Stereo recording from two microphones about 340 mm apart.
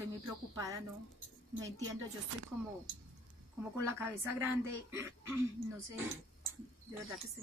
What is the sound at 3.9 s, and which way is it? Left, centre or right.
A woman's voice, centre.